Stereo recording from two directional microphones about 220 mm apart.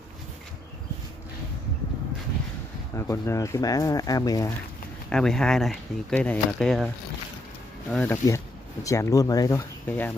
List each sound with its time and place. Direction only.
3.0 s speech: 15° left (ahead or behind)
5.1 s speech: 5° left (ahead or behind)
7.9 s speech: 10° left (ahead or behind)